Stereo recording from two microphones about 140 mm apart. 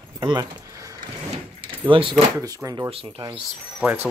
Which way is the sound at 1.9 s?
40° right (ahead or behind).